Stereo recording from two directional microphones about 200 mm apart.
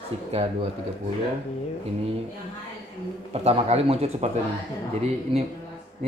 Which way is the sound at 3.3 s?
30° right (ahead or behind).